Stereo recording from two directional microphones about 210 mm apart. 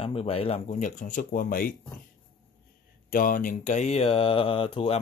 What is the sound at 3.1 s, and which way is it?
Speech, 40° left (ahead or behind).